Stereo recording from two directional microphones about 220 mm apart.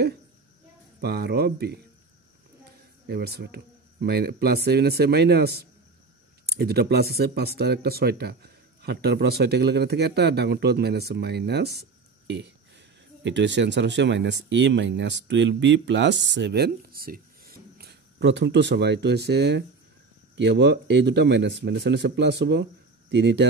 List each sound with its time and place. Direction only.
1.0 s speech: 45° right (ahead or behind)
3.1 s speech: 45° right (ahead or behind)